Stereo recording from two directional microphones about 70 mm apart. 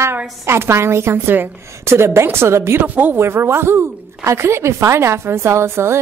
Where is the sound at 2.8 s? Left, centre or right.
Right.